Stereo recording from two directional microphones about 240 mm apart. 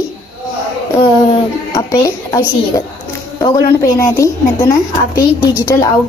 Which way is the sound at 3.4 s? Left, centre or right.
Centre.